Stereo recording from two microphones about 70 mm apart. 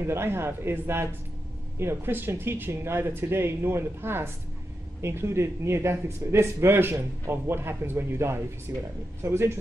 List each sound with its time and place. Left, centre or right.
0.0 s speech: right